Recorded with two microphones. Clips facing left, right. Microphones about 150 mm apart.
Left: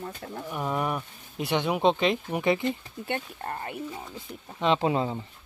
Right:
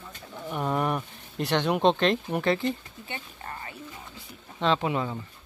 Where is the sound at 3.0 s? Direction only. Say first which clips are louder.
Left 7 dB; 55° left (ahead or behind).